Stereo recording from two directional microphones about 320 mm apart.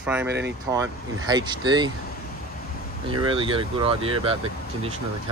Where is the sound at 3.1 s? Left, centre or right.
Centre.